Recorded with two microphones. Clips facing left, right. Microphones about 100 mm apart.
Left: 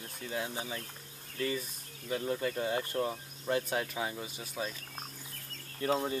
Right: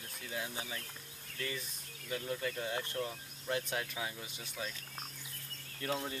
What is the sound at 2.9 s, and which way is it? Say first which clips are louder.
Speech: left 6 dB; 40° left (ahead or behind).